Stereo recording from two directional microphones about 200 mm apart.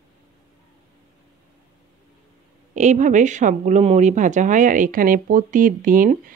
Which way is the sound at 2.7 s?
35° right (ahead or behind).